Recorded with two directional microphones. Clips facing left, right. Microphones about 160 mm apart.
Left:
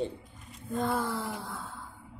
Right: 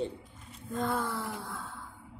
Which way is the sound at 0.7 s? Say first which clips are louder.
Left 2 dB; 10° left (ahead or behind).